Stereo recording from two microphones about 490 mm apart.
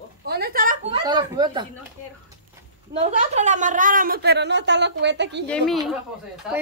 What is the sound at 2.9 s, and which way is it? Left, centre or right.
A woman's voice, centre.